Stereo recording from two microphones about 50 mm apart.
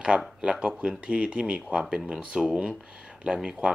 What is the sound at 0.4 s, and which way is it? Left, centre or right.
Speech, right.